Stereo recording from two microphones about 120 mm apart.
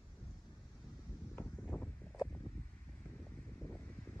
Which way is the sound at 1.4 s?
15° left (ahead or behind).